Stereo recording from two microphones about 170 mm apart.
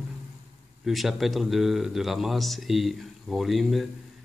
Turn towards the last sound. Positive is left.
turn(degrees=0)  # may be behind; listen again after turning